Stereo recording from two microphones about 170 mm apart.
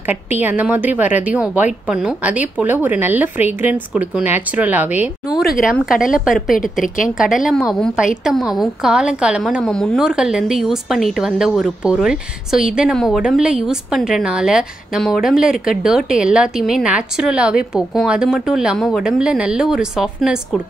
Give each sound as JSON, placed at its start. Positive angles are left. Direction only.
{"t": 0.0, "sound": "a woman's voice", "side_deg": -10}
{"t": 6.5, "sound": "a woman's voice", "side_deg": 55}
{"t": 7.2, "sound": "a woman's voice", "side_deg": -5}